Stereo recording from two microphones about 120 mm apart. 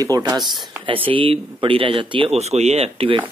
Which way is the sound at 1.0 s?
50° right (ahead or behind).